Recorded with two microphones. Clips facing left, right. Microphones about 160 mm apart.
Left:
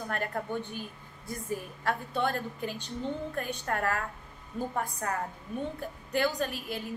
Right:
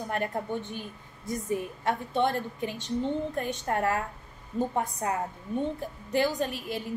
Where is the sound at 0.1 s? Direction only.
20° right (ahead or behind).